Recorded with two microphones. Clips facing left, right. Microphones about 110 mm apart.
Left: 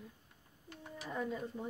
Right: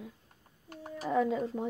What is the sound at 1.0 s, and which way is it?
Speech, 90° right.